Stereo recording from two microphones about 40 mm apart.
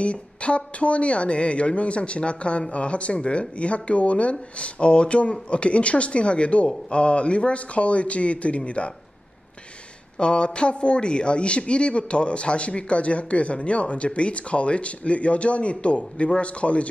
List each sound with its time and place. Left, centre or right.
0.0 s speech: left
10.1 s speech: left